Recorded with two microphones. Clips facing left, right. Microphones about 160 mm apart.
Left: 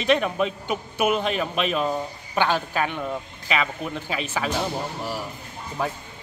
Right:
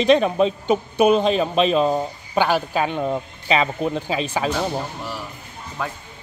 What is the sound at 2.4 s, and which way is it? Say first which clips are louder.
A man's voice: right 3 dB; 10° right (ahead or behind).